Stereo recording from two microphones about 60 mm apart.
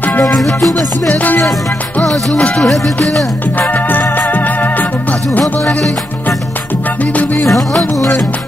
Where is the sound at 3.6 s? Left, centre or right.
Left.